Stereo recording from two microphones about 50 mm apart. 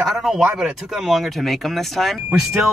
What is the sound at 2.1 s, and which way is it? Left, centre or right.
Speech, centre.